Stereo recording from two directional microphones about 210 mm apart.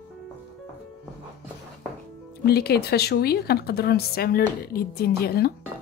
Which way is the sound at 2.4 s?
50° left (ahead or behind).